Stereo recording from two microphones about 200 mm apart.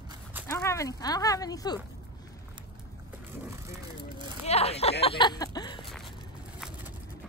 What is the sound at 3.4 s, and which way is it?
Speech, 10° right (ahead or behind).